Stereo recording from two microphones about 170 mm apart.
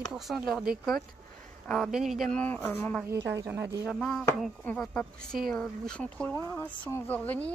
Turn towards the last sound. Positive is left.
turn(degrees=10)  # may be behind; listen again after turning